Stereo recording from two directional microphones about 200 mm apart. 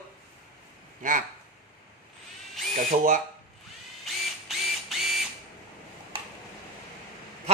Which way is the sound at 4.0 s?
Centre (ahead or behind).